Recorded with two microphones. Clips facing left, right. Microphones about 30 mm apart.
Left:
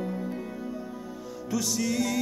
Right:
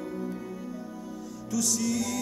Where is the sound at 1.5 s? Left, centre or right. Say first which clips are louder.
Even; left.